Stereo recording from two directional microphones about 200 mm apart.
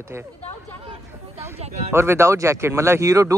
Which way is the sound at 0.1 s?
15° right (ahead or behind).